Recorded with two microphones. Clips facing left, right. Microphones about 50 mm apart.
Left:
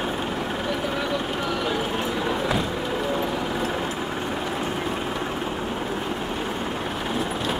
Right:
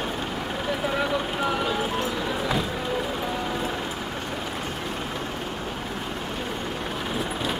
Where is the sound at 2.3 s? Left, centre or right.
Centre.